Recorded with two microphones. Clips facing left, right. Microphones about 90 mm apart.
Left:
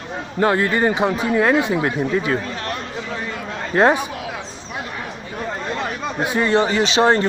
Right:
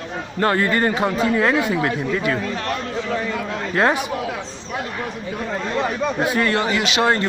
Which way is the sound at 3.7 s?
25° left (ahead or behind).